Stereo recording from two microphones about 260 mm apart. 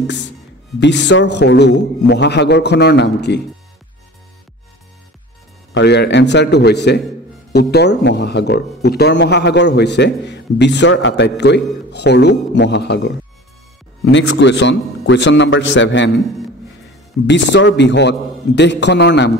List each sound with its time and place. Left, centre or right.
0.0 s a man's voice: left
5.8 s speech: left
14.4 s a man's voice: left
17.3 s speech: left